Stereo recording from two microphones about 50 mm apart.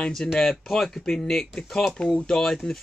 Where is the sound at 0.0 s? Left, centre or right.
Centre.